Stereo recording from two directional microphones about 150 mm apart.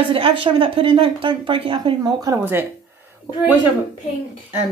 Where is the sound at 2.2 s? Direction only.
15° right (ahead or behind).